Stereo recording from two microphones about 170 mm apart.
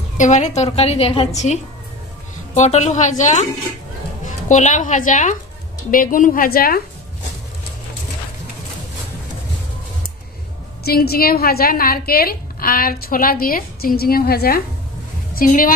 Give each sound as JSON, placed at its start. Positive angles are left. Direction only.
{"t": 0.2, "sound": "a woman's voice", "side_deg": 45}
{"t": 10.8, "sound": "a woman's voice", "side_deg": 65}